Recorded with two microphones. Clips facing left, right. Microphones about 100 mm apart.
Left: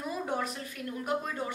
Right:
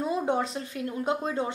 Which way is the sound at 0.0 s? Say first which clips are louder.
Right 6 dB; 25° right (ahead or behind).